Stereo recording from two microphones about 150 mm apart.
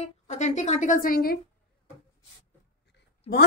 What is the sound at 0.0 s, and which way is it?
Speech, 50° left (ahead or behind).